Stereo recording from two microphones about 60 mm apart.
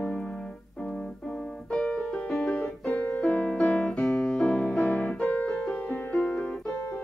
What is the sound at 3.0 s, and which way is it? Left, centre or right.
Music, left.